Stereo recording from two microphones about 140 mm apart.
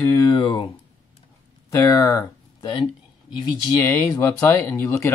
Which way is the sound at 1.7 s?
20° left (ahead or behind).